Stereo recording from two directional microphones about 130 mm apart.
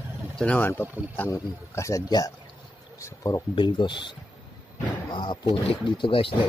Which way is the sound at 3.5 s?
40° left (ahead or behind).